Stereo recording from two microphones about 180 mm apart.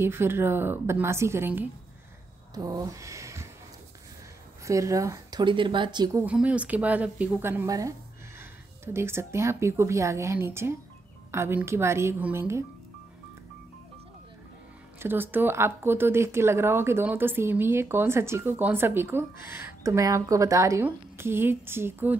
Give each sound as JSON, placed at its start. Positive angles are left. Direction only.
{"t": 0.0, "sound": "speech", "side_deg": -15}
{"t": 4.6, "sound": "speech", "side_deg": -15}
{"t": 6.2, "sound": "a woman's voice", "side_deg": -5}
{"t": 15.0, "sound": "speech", "side_deg": -10}